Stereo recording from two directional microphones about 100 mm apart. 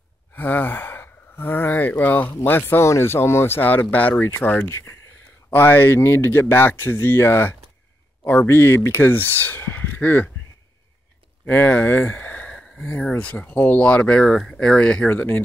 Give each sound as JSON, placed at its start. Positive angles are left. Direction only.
{"t": 0.3, "sound": "speech", "side_deg": 20}
{"t": 4.6, "sound": "speech", "side_deg": 30}
{"t": 5.5, "sound": "speech", "side_deg": 20}
{"t": 11.4, "sound": "speech", "side_deg": 15}